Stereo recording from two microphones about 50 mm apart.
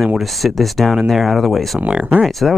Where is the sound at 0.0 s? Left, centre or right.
Centre.